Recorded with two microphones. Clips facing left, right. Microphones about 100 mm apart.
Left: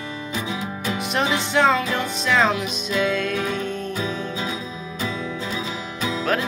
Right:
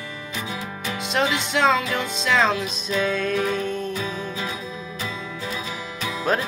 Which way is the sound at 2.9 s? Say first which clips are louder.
Even; centre (ahead or behind).